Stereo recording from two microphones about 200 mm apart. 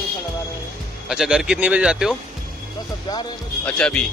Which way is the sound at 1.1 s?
5° right (ahead or behind).